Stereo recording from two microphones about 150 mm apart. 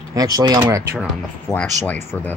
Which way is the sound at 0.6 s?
15° right (ahead or behind).